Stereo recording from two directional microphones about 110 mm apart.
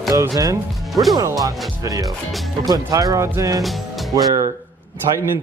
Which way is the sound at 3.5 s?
Centre (ahead or behind).